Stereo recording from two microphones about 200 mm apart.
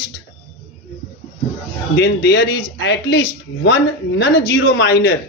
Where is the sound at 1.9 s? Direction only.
55° left (ahead or behind).